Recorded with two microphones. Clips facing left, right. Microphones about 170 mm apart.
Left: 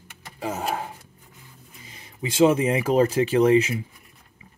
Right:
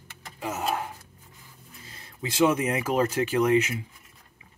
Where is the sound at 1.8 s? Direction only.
15° left (ahead or behind); by 3.7 s 30° left (ahead or behind).